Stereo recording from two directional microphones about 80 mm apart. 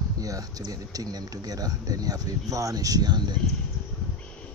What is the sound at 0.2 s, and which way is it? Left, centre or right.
Speech, right.